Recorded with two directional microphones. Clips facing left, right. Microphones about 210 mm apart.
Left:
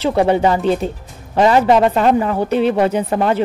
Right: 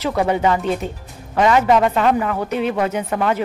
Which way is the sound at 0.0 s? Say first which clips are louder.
Left 4 dB; 30° left (ahead or behind).